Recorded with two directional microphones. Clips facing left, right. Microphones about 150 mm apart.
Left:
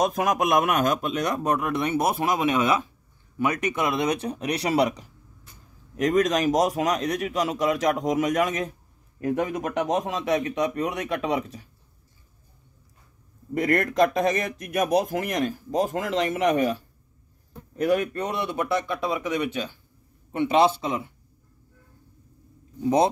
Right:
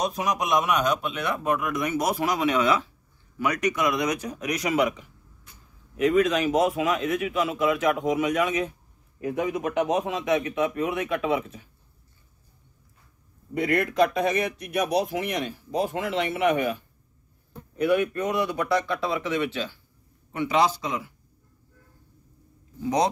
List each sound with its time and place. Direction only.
0.0 s speech: 50° left (ahead or behind)
13.6 s speech: 40° left (ahead or behind); by 21.1 s 25° left (ahead or behind)
22.8 s speech: 25° left (ahead or behind)